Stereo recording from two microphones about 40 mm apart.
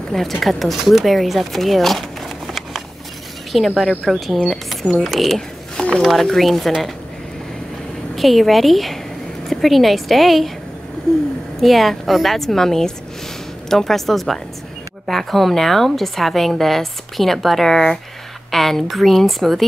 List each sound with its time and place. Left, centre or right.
0.1 s a woman's voice: centre
3.5 s a woman's voice: centre
5.8 s a sound: left
6.0 s a woman's voice: centre
8.2 s a woman's voice: centre
11.6 s a woman's voice: centre